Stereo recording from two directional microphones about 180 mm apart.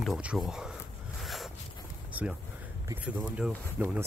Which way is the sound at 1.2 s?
Centre (ahead or behind).